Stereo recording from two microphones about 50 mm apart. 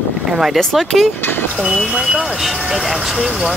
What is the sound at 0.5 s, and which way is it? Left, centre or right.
Speech, centre.